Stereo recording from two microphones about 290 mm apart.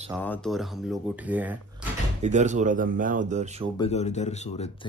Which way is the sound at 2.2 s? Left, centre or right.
Right.